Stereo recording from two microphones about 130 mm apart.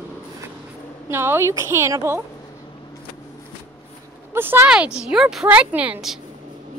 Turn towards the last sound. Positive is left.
turn(degrees=-5)  # may be behind; listen again after turning